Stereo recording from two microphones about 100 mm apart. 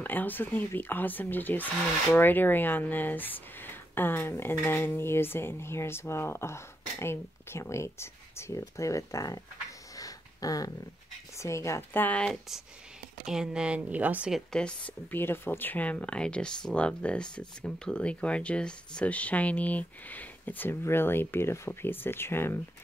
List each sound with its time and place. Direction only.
0.0 s speech: 20° left (ahead or behind)
12.3 s speech: 5° right (ahead or behind)
14.3 s speech: 10° left (ahead or behind); by 22.6 s 25° left (ahead or behind)